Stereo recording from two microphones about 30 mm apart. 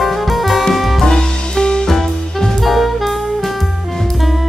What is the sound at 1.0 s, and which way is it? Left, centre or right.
Music, left.